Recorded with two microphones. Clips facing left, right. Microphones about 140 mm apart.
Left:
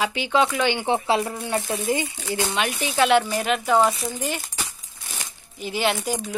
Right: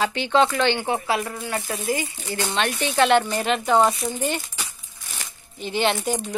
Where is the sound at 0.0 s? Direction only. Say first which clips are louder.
Right 2 dB; 10° left (ahead or behind).